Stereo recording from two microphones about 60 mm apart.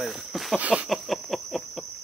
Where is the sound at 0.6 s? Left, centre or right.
Right.